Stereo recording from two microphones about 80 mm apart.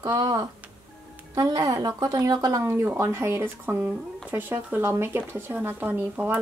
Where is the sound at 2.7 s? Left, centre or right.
Right.